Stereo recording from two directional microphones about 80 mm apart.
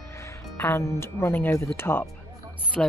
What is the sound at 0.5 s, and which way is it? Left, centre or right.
A woman's voice, left.